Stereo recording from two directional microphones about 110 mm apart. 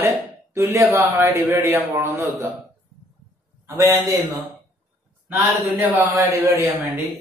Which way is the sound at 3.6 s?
25° right (ahead or behind).